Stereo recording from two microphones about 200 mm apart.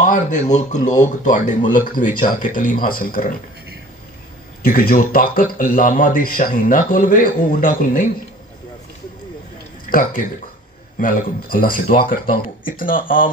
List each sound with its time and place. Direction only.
0.0 s speech: 40° left (ahead or behind)
4.6 s a man's voice: 45° left (ahead or behind)
9.8 s a man's voice: 40° left (ahead or behind)